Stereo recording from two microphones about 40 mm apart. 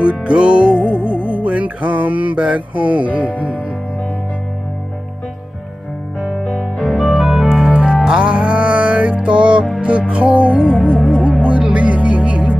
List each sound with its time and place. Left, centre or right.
0.0 s music: right
3.3 s speech: right
6.8 s organ: centre
7.4 s music: centre; by 10.7 s right
11.0 s music: centre
11.4 s music: right